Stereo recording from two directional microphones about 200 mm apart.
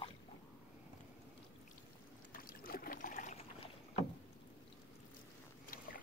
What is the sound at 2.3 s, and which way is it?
Boat, 45° left (ahead or behind).